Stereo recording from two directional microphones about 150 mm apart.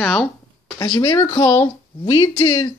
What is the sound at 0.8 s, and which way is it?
Speech, 35° left (ahead or behind).